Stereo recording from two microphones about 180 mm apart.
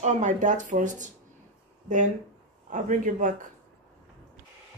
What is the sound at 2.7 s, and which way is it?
Speech, 45° right (ahead or behind).